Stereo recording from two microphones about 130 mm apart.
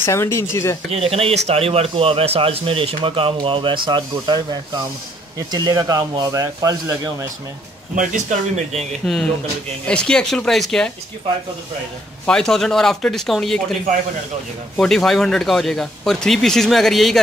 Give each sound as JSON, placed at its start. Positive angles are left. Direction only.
{"t": 0.0, "sound": "speech", "side_deg": 20}
{"t": 0.9, "sound": "speech", "side_deg": -50}
{"t": 7.9, "sound": "speech", "side_deg": -75}
{"t": 9.0, "sound": "speech", "side_deg": 5}
{"t": 12.3, "sound": "speech", "side_deg": 5}
{"t": 14.8, "sound": "speech", "side_deg": 5}